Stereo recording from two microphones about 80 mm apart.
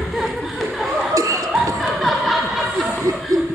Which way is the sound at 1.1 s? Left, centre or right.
Right.